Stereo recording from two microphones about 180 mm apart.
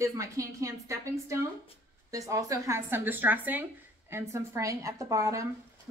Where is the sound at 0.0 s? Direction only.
15° right (ahead or behind).